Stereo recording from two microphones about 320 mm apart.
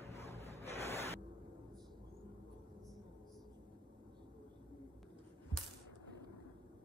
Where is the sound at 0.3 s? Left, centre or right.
Centre.